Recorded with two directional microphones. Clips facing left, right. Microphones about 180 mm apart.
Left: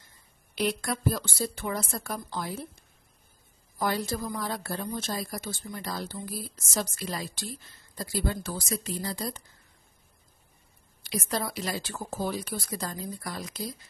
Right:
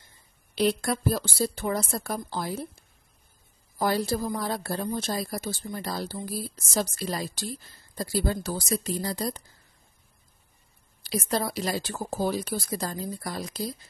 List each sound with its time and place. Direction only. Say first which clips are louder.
0.6 s a woman's voice: right 4 dB; 35° right (ahead or behind)
3.7 s a woman's voice: right 4 dB; 35° right (ahead or behind)
11.1 s a woman's voice: right 3 dB; 35° right (ahead or behind)